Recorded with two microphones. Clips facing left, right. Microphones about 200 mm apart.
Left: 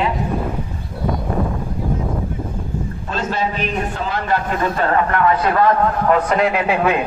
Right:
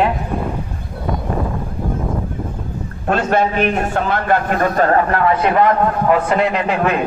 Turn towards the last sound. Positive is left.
turn(degrees=10)  # may be behind; listen again after turning